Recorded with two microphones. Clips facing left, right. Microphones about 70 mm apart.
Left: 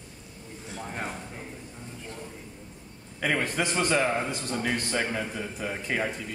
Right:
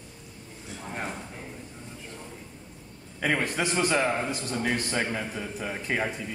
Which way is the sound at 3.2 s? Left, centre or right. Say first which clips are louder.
Even; centre.